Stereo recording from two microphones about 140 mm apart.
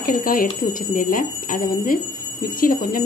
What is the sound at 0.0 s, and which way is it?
Speech, 90° left.